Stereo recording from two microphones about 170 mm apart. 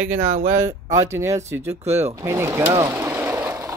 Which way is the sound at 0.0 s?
10° right (ahead or behind).